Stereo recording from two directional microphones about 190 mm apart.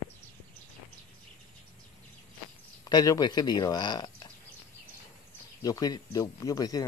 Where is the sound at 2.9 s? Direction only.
20° left (ahead or behind).